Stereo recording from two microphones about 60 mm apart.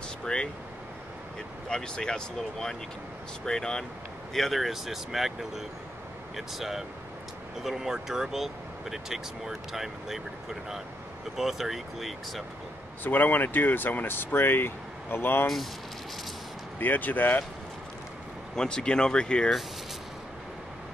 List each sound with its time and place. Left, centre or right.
0.2 s speech: centre
1.7 s speech: centre
13.0 s speech: left
15.4 s speech: centre
16.8 s speech: left
18.6 s speech: centre